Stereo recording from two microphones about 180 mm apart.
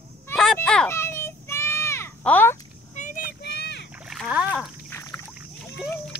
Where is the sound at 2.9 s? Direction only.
45° left (ahead or behind).